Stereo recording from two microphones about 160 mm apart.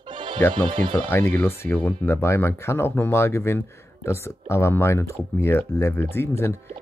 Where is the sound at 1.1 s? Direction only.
15° left (ahead or behind).